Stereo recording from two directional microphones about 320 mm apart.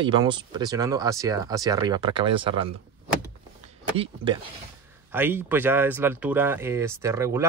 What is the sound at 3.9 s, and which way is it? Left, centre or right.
Speech, centre.